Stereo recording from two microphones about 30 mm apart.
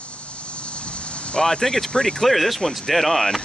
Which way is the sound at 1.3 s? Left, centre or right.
Left.